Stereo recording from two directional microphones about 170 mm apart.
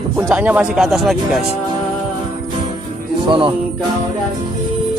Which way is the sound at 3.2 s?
30° right (ahead or behind).